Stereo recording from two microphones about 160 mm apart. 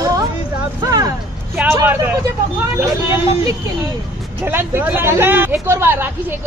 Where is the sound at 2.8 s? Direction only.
15° right (ahead or behind).